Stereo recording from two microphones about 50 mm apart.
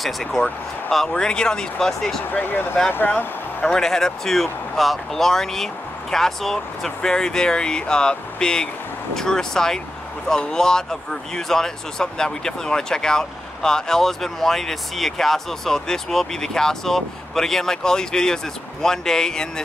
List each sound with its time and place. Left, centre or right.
0.0 s speech: centre
0.9 s speech: centre
2.3 s speech: left
3.6 s speech: centre